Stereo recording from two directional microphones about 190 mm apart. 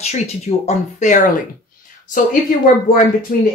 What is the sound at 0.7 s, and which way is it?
Speech, 40° left (ahead or behind).